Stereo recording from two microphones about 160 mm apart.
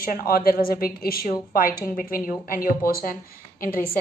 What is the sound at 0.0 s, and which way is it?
A woman's voice, 65° left (ahead or behind).